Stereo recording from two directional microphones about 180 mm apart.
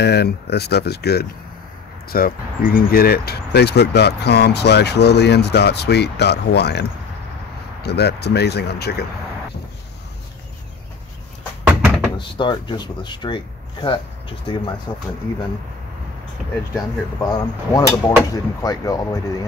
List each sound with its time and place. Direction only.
0.0 s speech: 65° left (ahead or behind)
11.6 s door: 10° right (ahead or behind)
12.2 s speech: 25° left (ahead or behind)
17.2 s speech: 20° left (ahead or behind)